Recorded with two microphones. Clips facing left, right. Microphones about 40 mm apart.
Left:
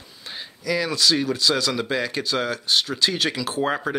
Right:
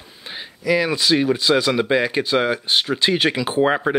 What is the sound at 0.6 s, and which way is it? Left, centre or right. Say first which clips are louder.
Speech: right 4 dB; right.